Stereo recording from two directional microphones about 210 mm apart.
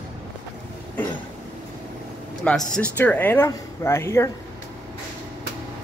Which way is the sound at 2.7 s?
5° left (ahead or behind).